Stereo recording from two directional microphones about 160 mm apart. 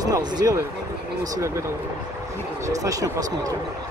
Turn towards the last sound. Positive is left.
turn(degrees=-20)  # may be behind; listen again after turning